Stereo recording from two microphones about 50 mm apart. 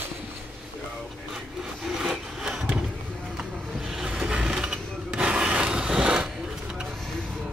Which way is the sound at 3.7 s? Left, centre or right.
Centre.